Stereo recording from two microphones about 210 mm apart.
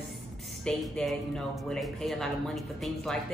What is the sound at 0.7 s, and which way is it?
Speech, centre (ahead or behind).